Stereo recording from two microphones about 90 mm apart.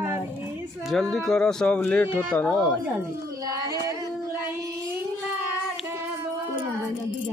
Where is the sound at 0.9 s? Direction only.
Centre (ahead or behind); by 2.6 s 20° left (ahead or behind).